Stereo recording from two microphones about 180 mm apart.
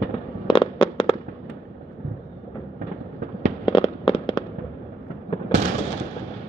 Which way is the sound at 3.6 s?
30° left (ahead or behind).